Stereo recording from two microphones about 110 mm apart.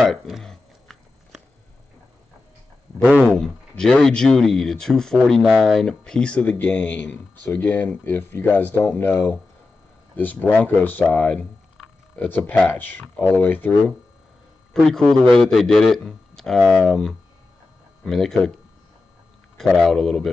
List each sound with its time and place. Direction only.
0.0 s a sound: centre (ahead or behind)
3.0 s speech: 10° right (ahead or behind)
3.3 s speech: 5° left (ahead or behind)
14.7 s a man's voice: 5° left (ahead or behind)
19.5 s a man's voice: centre (ahead or behind)